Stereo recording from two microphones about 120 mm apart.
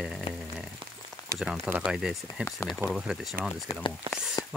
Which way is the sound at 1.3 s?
5° right (ahead or behind).